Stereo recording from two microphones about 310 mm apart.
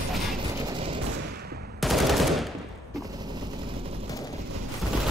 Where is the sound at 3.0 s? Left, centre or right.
Centre.